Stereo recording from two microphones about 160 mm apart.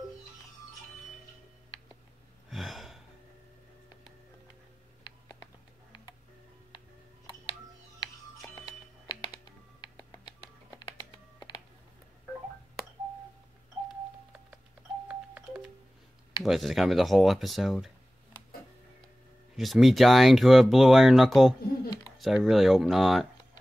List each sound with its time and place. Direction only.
2.5 s gasp: centre (ahead or behind)
5.0 s typing: 25° left (ahead or behind)
8.0 s music: 25° left (ahead or behind)
10.8 s typing: 30° left (ahead or behind)
16.4 s speech: centre (ahead or behind)
19.5 s speech: centre (ahead or behind)